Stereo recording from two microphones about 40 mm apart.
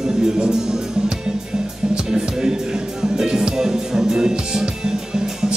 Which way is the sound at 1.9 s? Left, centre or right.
Centre.